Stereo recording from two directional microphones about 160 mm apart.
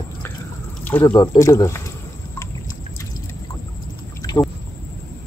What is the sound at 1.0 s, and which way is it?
Speech, 25° left (ahead or behind).